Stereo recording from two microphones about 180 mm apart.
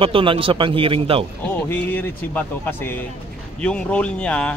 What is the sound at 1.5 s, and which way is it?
A man's voice, 10° left (ahead or behind).